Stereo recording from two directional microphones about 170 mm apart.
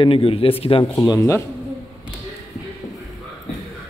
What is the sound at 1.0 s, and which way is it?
Speech, 20° left (ahead or behind).